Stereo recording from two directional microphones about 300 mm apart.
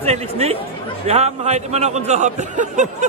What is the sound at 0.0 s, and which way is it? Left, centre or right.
A man's voice, centre.